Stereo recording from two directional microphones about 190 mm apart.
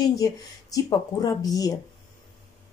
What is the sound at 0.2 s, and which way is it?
Speech, 20° left (ahead or behind).